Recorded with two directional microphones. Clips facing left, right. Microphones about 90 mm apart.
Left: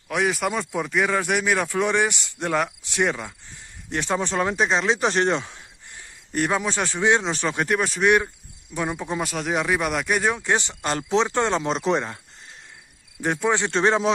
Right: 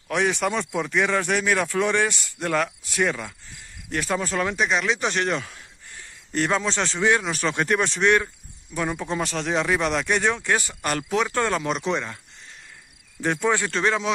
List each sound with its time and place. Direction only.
0.1 s speech: 5° left (ahead or behind); by 5.6 s 30° left (ahead or behind)
6.3 s speech: 15° left (ahead or behind)
7.4 s speech: 10° left (ahead or behind)
10.5 s speech: 25° left (ahead or behind)
13.2 s speech: 15° left (ahead or behind)
13.7 s speech: 30° left (ahead or behind)